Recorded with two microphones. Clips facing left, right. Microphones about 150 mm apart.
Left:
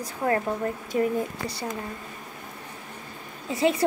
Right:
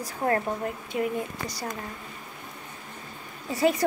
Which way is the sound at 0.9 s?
35° left (ahead or behind).